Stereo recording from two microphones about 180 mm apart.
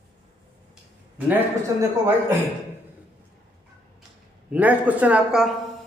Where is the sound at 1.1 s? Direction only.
10° right (ahead or behind).